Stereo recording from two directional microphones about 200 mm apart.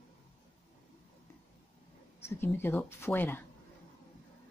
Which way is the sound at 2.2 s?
10° left (ahead or behind).